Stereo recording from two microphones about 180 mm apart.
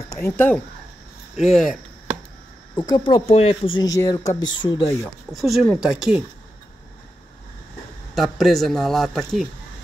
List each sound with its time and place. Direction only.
0.1 s speech: 10° left (ahead or behind)
1.3 s speech: centre (ahead or behind)
2.7 s speech: 25° left (ahead or behind)
5.0 s speech: centre (ahead or behind)
8.1 s speech: centre (ahead or behind)